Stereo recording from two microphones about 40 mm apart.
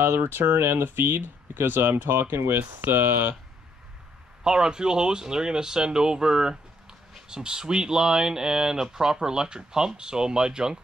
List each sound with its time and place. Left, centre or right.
0.0 s speech: right
4.4 s speech: centre